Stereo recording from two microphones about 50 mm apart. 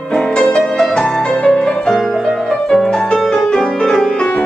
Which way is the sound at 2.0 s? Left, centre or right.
Centre.